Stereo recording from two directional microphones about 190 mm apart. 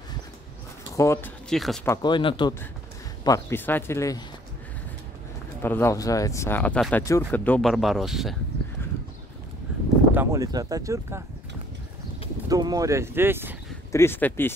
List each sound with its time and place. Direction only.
0.9 s speech: 15° left (ahead or behind)
1.5 s speech: centre (ahead or behind)
1.9 s speech: 20° left (ahead or behind)
5.6 s speech: 10° left (ahead or behind)
10.1 s speech: 15° right (ahead or behind)
12.4 s speech: 20° right (ahead or behind)
13.9 s speech: 10° left (ahead or behind)